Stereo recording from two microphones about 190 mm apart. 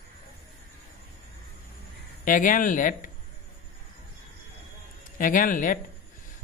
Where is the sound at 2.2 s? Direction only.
45° left (ahead or behind).